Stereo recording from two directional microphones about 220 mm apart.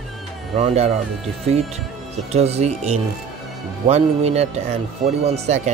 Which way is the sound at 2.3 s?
30° right (ahead or behind).